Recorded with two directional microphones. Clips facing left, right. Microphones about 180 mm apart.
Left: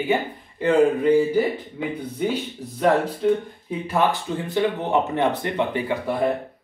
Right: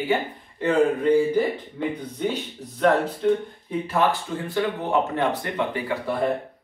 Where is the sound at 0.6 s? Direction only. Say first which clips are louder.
Left 2 dB; 5° left (ahead or behind).